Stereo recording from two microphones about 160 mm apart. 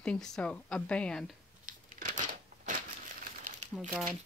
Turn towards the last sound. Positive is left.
turn(degrees=-5)  # may be behind; listen again after turning